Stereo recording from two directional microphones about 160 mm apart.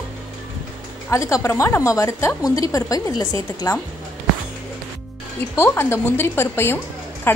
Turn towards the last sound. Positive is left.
turn(degrees=15)  # may be behind; listen again after turning